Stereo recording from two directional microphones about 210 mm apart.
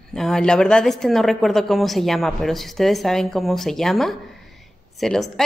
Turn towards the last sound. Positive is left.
turn(degrees=0)  # may be behind; listen again after turning